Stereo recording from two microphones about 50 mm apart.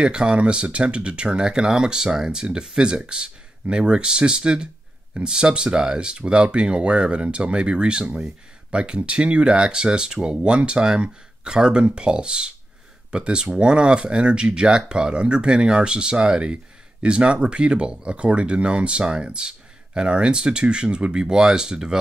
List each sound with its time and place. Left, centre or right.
0.0 s speech: centre